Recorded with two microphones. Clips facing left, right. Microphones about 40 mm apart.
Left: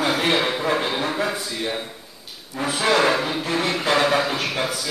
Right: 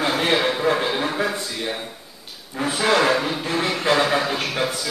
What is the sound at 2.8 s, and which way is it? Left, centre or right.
Speech, centre.